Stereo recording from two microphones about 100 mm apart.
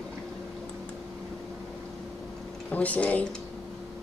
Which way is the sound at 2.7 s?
15° left (ahead or behind).